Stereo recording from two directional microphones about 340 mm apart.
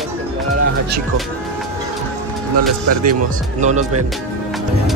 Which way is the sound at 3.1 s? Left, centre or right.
Right.